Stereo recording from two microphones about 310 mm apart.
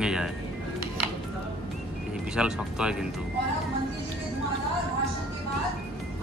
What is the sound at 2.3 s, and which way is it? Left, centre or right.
Speech, centre.